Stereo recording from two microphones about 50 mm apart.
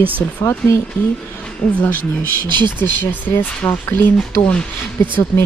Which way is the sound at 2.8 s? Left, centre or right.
Left.